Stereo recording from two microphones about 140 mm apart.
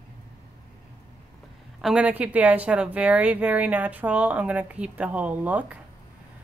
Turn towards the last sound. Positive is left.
turn(degrees=-10)  # may be behind; listen again after turning